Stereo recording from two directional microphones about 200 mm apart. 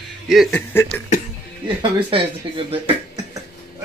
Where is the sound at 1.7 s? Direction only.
25° right (ahead or behind).